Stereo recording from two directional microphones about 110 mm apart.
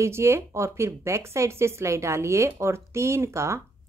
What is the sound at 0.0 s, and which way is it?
Speech, 25° right (ahead or behind).